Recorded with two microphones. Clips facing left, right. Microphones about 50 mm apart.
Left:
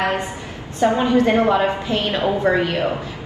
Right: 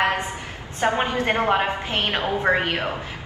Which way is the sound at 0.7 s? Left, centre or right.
Right.